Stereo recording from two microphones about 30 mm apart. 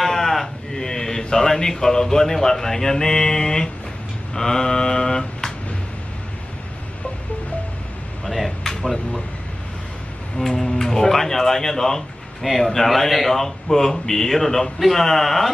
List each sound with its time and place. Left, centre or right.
0.0 s sheep: centre
0.7 s a man's voice: centre
3.2 s a sound: left
8.3 s air conditioning: centre
8.6 s speech: centre
10.3 s speech: centre
12.4 s a man's voice: centre